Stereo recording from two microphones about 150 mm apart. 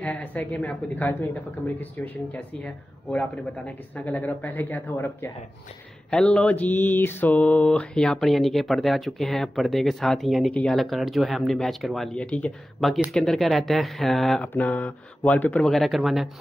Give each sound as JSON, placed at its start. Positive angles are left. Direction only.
{"t": 0.0, "sound": "speech", "side_deg": 10}
{"t": 6.0, "sound": "mantra", "side_deg": 5}
{"t": 14.5, "sound": "speech", "side_deg": 10}